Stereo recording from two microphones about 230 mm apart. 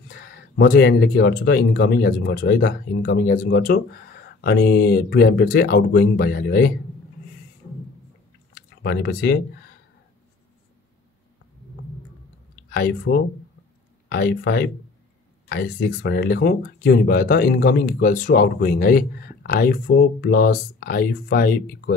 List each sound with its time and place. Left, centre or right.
0.1 s speech: left
8.5 s speech: left
12.6 s speech: left